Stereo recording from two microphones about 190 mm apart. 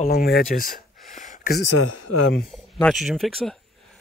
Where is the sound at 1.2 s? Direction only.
45° left (ahead or behind).